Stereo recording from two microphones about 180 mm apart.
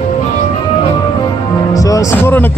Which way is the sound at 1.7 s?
20° left (ahead or behind).